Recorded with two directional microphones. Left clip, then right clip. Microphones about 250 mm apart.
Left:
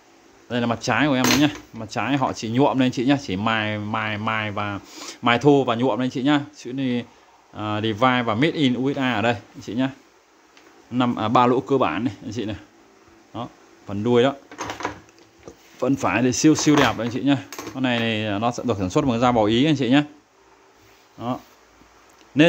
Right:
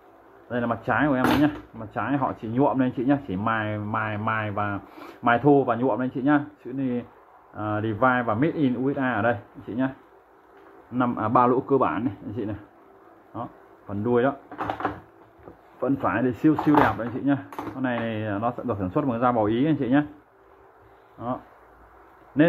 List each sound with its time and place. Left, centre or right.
0.5 s cutlery: left
10.9 s speech: left
13.3 s bee: left
15.8 s cutlery: left